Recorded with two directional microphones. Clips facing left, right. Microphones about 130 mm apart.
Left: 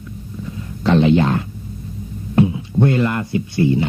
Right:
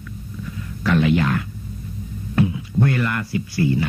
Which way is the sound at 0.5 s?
25° left (ahead or behind).